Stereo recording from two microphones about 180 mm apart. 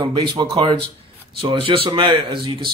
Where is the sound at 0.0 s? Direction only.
25° right (ahead or behind).